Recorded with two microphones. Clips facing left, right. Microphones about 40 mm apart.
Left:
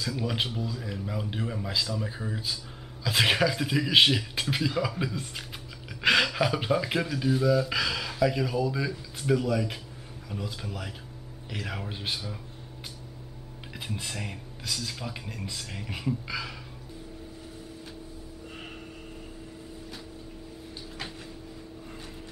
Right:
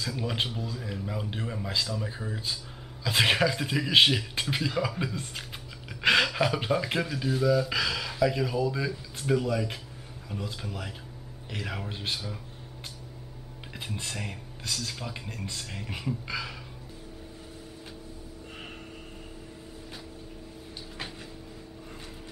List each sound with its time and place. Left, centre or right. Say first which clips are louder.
0.0 s speech: left 1 dB; centre
13.7 s speech: even; centre